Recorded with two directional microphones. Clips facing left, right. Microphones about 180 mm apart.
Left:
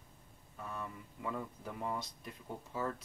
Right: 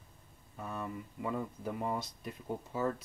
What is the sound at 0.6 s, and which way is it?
Speech, 20° right (ahead or behind).